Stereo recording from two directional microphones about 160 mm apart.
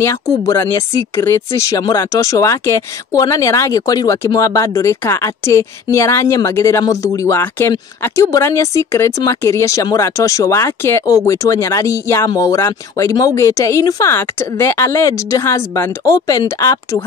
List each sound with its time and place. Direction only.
0.0 s speech: 20° left (ahead or behind)